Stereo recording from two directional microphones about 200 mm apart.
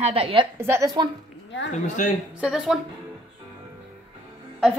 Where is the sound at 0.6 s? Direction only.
15° right (ahead or behind).